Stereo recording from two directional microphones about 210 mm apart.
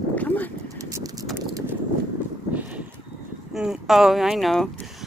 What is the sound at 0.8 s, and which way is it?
Clip-clop, 15° right (ahead or behind).